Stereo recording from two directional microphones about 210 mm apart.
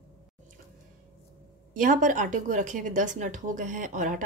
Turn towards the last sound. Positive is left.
turn(degrees=-35)  # may be behind; listen again after turning